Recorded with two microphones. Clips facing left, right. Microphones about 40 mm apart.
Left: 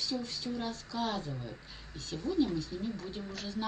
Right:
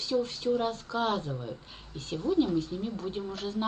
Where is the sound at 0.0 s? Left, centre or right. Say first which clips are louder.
Right 8 dB; right.